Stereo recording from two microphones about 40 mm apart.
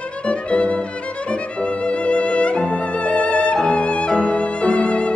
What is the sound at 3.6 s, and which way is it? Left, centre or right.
Violin, left.